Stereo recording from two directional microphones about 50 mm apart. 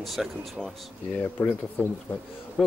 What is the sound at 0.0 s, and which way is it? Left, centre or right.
Speech, centre.